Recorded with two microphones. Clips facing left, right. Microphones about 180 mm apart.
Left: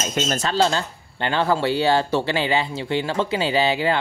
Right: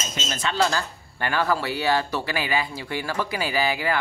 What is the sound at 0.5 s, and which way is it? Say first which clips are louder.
Speech: left 2 dB; 25° left (ahead or behind).